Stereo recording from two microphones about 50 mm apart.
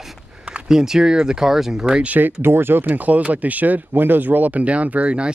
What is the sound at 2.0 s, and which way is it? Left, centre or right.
Speech, right.